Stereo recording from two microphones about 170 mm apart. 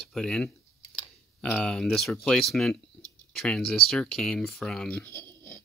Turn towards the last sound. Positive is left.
turn(degrees=10)  # may be behind; listen again after turning